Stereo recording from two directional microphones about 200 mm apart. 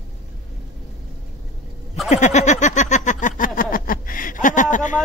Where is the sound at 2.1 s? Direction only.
35° left (ahead or behind).